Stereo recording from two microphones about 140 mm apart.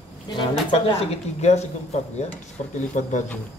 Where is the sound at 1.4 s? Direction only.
55° left (ahead or behind).